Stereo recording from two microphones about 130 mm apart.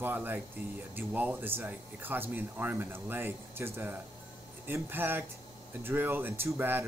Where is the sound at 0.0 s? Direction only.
15° right (ahead or behind).